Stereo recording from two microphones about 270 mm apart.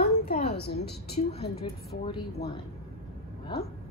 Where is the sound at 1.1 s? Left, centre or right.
Left.